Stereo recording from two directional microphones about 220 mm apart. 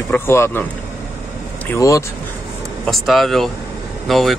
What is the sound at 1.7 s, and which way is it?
Speech, 15° left (ahead or behind).